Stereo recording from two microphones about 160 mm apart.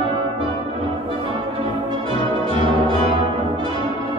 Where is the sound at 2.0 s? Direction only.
30° right (ahead or behind).